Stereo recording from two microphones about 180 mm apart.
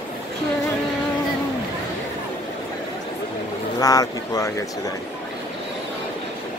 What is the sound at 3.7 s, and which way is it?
Speech, 20° left (ahead or behind).